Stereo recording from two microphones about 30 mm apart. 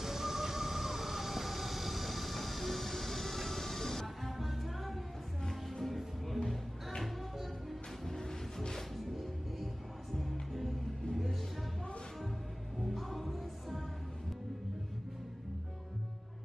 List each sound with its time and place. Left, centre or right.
0.0 s train: centre
4.6 s music: centre
8.0 s vehicle: centre
8.9 s music: centre
12.8 s music: centre